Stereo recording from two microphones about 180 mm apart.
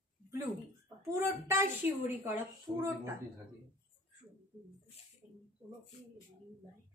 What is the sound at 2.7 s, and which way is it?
Speech, 25° right (ahead or behind).